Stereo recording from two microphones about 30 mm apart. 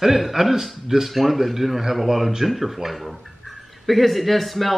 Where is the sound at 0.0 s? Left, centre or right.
Centre.